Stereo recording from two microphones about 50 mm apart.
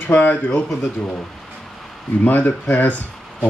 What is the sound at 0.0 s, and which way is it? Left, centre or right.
Speech, left.